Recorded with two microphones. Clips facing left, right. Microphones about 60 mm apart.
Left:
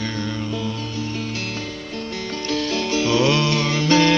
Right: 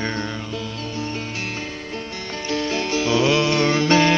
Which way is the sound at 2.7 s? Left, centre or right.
Centre.